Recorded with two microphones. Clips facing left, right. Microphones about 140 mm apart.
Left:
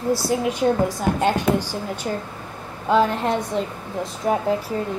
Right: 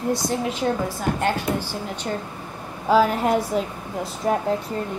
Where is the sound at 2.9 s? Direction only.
5° right (ahead or behind).